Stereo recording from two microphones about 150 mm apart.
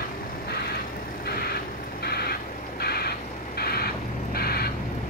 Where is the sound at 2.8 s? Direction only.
90° left.